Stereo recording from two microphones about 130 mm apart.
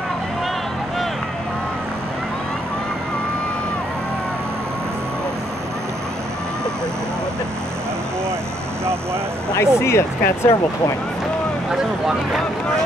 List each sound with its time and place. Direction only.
9.5 s speech: 20° left (ahead or behind)